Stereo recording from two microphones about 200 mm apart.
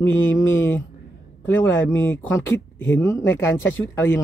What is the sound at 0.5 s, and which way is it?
Speech, 10° left (ahead or behind).